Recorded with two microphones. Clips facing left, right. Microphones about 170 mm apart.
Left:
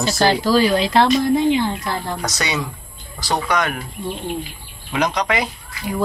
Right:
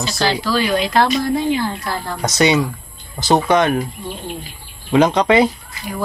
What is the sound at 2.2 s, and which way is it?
Speech, 20° right (ahead or behind).